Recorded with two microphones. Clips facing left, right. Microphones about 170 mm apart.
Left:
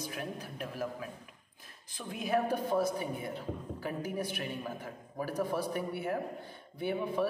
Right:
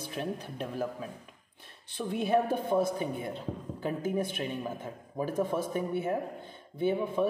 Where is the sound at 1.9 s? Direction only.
30° right (ahead or behind).